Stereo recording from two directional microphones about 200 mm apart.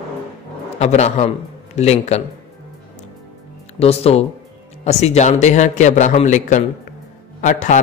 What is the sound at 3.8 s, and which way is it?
Speech, 30° left (ahead or behind).